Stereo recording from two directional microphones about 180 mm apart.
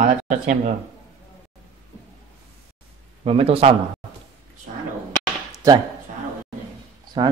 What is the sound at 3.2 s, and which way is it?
Speech, 35° right (ahead or behind).